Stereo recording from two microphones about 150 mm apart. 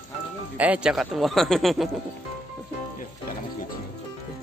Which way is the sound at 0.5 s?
10° right (ahead or behind).